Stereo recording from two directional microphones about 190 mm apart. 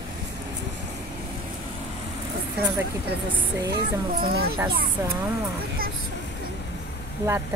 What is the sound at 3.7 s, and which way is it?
Speech, 55° right (ahead or behind).